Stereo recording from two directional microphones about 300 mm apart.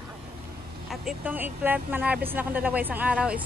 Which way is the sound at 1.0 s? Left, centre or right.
Centre.